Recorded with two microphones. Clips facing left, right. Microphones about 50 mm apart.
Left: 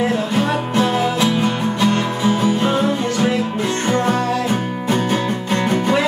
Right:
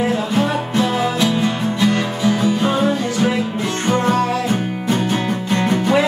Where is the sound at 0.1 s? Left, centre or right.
Centre.